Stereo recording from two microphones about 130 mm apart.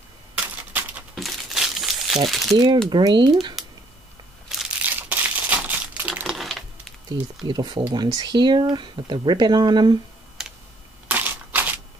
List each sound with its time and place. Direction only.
0.4 s typewriter: 10° right (ahead or behind)
1.1 s crumpling: centre (ahead or behind)
2.2 s speech: centre (ahead or behind)
2.5 s speech: 35° right (ahead or behind)
4.5 s crushing: 5° right (ahead or behind)
4.8 s crumpling: 15° right (ahead or behind)
6.2 s typing: centre (ahead or behind)
7.4 s speech: 35° right (ahead or behind)
10.4 s computer keyboard: 5° right (ahead or behind)
11.1 s typewriter: 15° right (ahead or behind)